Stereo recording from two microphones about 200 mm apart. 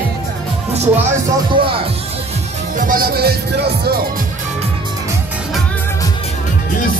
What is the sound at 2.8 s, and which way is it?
Speech, 45° right (ahead or behind).